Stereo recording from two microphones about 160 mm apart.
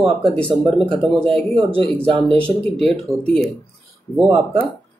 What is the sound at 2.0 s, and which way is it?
Speech, 35° right (ahead or behind).